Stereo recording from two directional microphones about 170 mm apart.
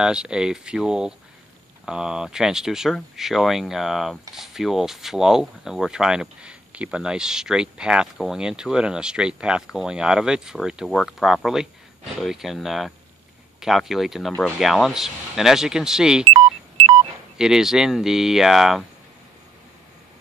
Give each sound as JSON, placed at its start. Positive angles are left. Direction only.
{"t": 0.0, "sound": "speech", "side_deg": -5}
{"t": 17.4, "sound": "speech", "side_deg": -5}